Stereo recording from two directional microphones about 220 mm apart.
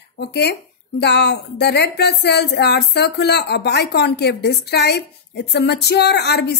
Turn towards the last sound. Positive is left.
turn(degrees=50)  # may be behind; listen again after turning